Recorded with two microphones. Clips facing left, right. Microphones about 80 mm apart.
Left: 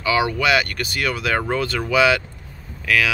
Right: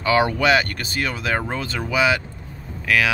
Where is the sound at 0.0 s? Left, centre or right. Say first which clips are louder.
Right 1 dB; right.